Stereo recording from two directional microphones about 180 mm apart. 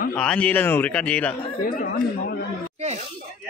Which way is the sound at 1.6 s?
55° left (ahead or behind).